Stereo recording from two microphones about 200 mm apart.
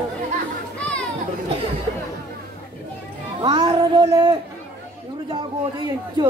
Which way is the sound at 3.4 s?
20° right (ahead or behind).